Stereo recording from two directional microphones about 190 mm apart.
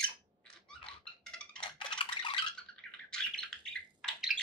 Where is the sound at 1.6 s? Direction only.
25° left (ahead or behind).